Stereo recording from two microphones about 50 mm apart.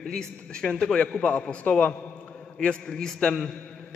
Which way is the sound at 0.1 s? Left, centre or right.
Centre.